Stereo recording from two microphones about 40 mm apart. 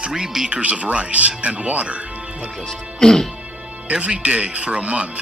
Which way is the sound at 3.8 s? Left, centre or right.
Right.